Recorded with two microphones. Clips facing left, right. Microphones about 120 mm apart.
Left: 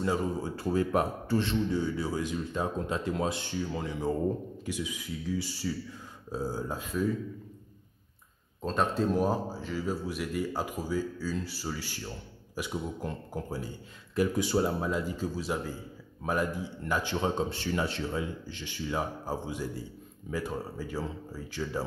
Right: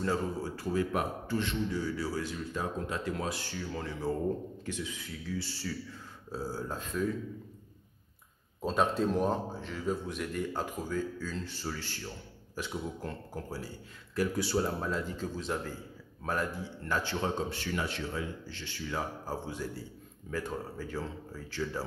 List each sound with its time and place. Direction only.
0.0 s a man's voice: 15° left (ahead or behind)
8.6 s a man's voice: centre (ahead or behind)